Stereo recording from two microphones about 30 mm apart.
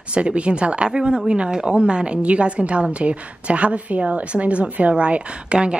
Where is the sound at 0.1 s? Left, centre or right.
Right.